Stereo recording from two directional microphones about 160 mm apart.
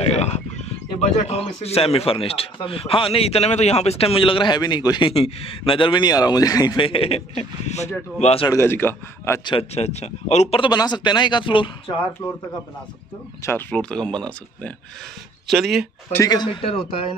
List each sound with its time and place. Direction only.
0.0 s a man's voice: 40° left (ahead or behind)
5.1 s a man's voice: 35° left (ahead or behind)
8.5 s speech: 15° left (ahead or behind)
9.4 s a man's voice: 35° left (ahead or behind)
13.5 s speech: 10° left (ahead or behind)
16.1 s speech: 20° left (ahead or behind)